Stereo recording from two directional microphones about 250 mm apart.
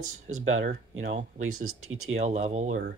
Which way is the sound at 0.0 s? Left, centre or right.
Right.